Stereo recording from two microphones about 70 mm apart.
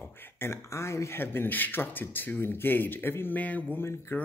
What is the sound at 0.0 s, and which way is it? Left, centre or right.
Speech, left.